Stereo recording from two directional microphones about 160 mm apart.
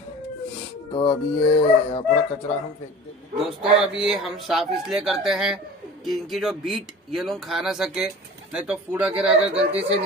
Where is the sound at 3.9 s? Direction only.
5° right (ahead or behind).